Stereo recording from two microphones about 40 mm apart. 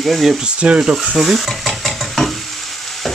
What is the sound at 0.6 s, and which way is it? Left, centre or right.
Speech, right.